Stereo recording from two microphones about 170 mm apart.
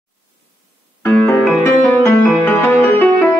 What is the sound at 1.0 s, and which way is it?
Music, 10° left (ahead or behind).